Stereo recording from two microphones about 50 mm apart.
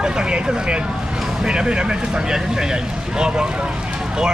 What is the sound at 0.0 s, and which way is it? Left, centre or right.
Vehicle, right.